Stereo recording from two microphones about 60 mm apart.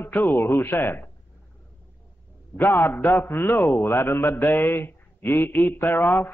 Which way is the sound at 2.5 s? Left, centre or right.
Left.